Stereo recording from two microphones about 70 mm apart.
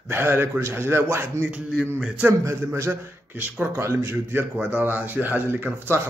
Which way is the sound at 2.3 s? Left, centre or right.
Right.